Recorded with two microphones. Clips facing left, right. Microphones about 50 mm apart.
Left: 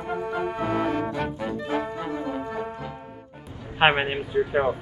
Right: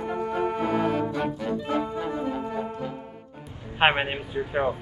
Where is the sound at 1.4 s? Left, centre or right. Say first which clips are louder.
Even; centre.